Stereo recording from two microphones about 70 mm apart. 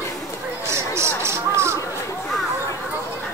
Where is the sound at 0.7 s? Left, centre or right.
Right.